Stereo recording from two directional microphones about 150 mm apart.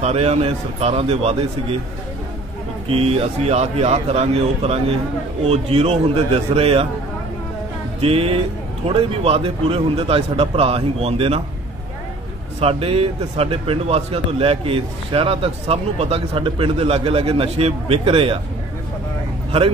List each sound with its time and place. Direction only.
0.0 s a man's voice: 45° right (ahead or behind)
2.9 s a man's voice: 40° right (ahead or behind)
8.0 s a man's voice: 40° right (ahead or behind)
12.5 s a man's voice: 40° right (ahead or behind)